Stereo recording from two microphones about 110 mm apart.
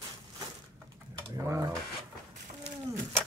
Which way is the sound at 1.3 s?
30° right (ahead or behind).